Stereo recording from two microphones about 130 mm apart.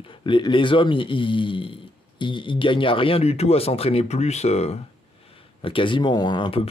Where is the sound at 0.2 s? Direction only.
40° left (ahead or behind); by 4.7 s 55° left (ahead or behind).